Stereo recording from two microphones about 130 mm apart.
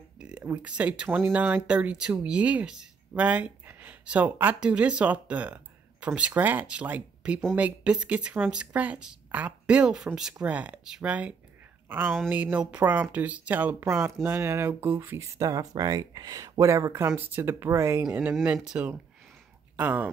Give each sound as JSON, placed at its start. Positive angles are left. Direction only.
{"t": 0.2, "sound": "a sound", "side_deg": -5}
{"t": 0.5, "sound": "speech", "side_deg": -10}
{"t": 18.3, "sound": "speech", "side_deg": -5}